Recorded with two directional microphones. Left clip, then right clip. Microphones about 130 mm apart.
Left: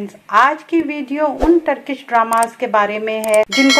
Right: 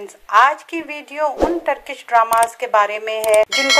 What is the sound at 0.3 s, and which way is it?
Speech, 45° right (ahead or behind).